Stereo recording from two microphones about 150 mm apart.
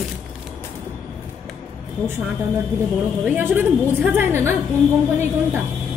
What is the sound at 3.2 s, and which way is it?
A woman's voice, 10° right (ahead or behind).